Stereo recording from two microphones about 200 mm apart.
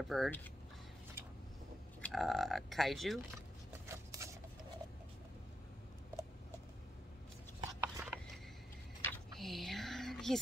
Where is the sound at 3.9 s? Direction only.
15° right (ahead or behind).